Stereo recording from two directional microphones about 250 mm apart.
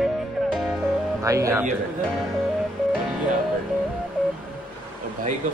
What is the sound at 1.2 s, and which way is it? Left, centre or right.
Music, centre.